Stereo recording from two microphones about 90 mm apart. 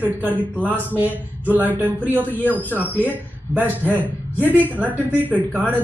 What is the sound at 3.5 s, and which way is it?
Speech, 20° right (ahead or behind).